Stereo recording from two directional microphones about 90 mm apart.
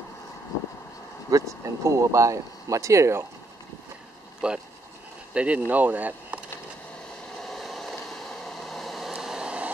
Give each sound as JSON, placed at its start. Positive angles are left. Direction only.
{"t": 1.3, "sound": "speech", "side_deg": -35}
{"t": 4.4, "sound": "speech", "side_deg": -10}
{"t": 7.4, "sound": "a sound", "side_deg": 0}